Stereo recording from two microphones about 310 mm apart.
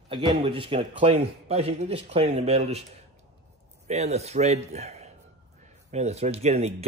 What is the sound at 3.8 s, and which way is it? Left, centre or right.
Speech, right.